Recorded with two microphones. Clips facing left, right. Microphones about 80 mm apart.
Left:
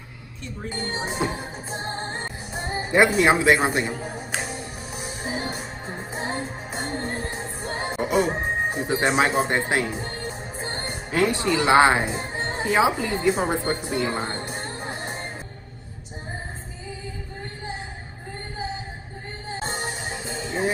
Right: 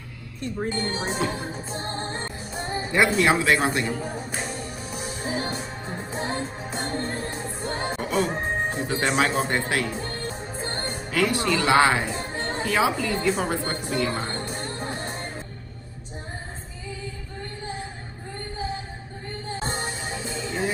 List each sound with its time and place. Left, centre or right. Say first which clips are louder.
0.4 s speech: right 6 dB; right
0.9 s music: even; left
3.9 s speech: right 2 dB; centre
4.4 s music: even; centre
19.5 s music: left 1 dB; left